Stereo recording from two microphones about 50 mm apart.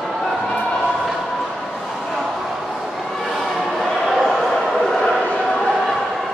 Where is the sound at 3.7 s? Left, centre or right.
Centre.